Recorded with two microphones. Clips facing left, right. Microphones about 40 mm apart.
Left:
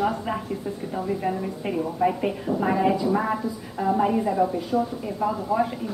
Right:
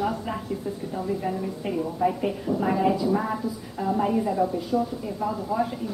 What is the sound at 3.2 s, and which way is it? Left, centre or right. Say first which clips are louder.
A woman's voice: left 2 dB; left.